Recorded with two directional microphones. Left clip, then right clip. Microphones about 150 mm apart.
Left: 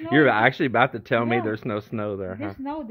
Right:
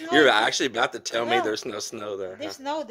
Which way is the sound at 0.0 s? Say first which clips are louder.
Even; 20° right (ahead or behind).